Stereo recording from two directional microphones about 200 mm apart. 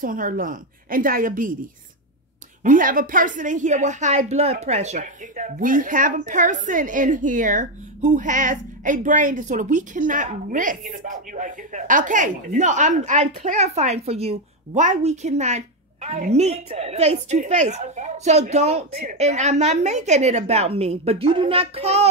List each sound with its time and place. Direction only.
0.0 s a woman's voice: 45° right (ahead or behind)
2.6 s speech: 40° right (ahead or behind)